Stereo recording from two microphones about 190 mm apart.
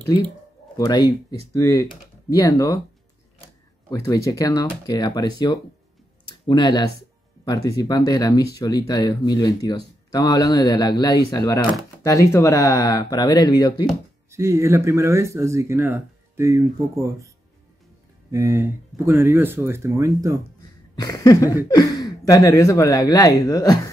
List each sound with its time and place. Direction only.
0.7 s speech: 20° left (ahead or behind)
3.9 s speech: 15° left (ahead or behind)
14.3 s speech: 15° right (ahead or behind)
18.3 s speech: 15° right (ahead or behind)
20.9 s speech: 20° left (ahead or behind)